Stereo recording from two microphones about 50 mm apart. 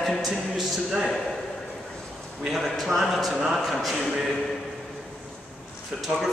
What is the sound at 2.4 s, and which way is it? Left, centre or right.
A man's voice, centre.